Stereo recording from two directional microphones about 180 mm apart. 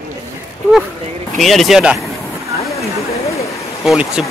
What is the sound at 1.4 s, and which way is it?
Speech, centre (ahead or behind).